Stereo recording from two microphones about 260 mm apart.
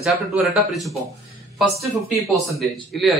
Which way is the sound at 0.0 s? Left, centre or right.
Centre.